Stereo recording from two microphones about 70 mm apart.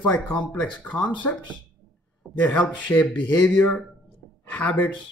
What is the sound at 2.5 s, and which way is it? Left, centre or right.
A man's voice, left.